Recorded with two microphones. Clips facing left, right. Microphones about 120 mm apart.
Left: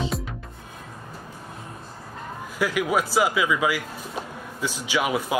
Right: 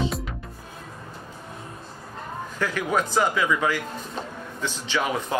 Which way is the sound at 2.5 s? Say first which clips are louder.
Left 2 dB; 10° left (ahead or behind).